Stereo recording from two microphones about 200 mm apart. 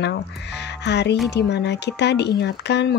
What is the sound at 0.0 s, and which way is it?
Speech, 60° left (ahead or behind).